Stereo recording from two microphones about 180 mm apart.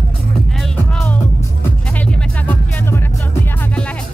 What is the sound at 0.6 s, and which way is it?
Music, 5° left (ahead or behind).